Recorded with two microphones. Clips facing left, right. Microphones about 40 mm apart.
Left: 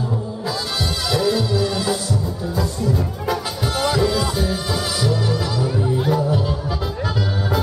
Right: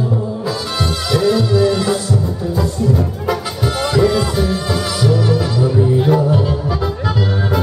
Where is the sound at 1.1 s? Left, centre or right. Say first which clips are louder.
Right 5 dB; centre.